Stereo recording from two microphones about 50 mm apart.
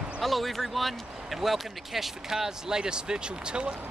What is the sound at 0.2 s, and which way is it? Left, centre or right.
Speech, centre.